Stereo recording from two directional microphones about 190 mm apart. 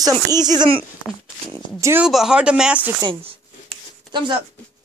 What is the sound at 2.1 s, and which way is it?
Speech, 5° right (ahead or behind).